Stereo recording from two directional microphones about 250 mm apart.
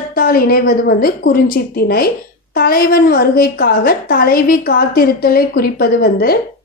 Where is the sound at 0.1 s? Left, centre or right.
Left.